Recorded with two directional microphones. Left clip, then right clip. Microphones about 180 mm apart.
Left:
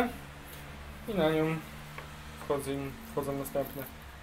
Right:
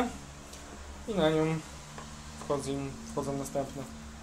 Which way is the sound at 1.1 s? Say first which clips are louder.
Right 1 dB; centre (ahead or behind).